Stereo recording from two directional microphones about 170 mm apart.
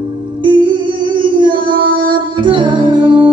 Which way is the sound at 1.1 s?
30° right (ahead or behind).